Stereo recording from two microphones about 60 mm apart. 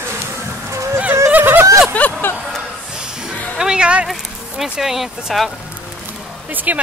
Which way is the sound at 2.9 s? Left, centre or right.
Centre.